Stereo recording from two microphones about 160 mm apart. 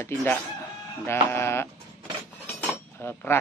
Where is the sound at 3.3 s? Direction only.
15° left (ahead or behind).